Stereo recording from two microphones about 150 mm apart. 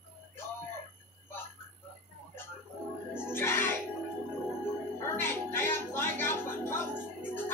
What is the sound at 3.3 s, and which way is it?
Music, 15° left (ahead or behind).